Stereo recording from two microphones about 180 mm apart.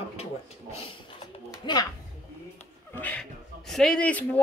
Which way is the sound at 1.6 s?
25° left (ahead or behind).